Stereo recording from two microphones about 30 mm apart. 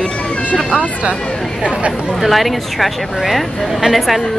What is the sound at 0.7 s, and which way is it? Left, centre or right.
Speech, right.